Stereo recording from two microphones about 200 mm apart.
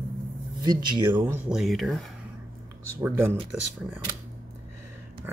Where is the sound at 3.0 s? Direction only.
10° right (ahead or behind).